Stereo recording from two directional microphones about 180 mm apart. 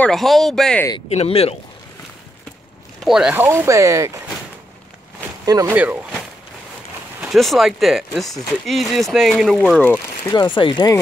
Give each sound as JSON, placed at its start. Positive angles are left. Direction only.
{"t": 0.0, "sound": "speech", "side_deg": 0}
{"t": 1.0, "sound": "speech", "side_deg": 35}
{"t": 3.1, "sound": "speech", "side_deg": -5}
{"t": 5.4, "sound": "speech", "side_deg": -20}
{"t": 7.2, "sound": "speech", "side_deg": 0}